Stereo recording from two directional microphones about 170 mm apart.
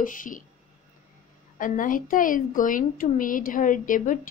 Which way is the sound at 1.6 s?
50° left (ahead or behind).